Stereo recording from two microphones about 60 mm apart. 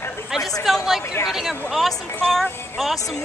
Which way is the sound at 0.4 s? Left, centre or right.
Left.